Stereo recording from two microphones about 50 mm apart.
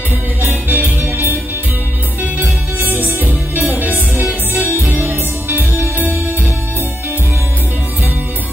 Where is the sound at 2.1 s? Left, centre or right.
Right.